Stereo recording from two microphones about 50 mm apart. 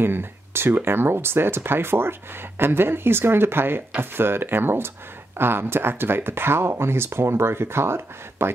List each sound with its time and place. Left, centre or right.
0.0 s speech: right